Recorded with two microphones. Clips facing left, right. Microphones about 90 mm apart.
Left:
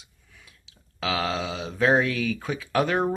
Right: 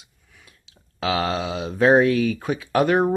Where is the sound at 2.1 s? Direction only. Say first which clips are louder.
Right 7 dB; 90° left.